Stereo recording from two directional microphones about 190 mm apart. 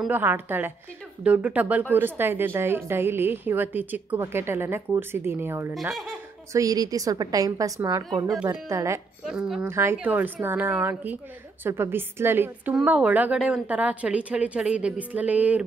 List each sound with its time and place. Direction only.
0.0 s a woman's voice: 10° right (ahead or behind)
9.2 s speech: 5° right (ahead or behind)